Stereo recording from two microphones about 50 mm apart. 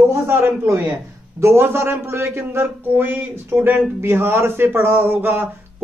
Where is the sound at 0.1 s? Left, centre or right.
Right.